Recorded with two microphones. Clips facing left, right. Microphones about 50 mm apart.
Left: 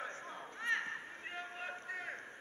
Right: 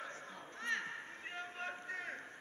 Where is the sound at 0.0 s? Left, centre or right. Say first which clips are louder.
Left 3 dB; left.